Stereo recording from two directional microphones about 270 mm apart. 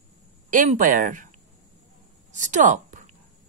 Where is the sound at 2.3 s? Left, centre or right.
Right.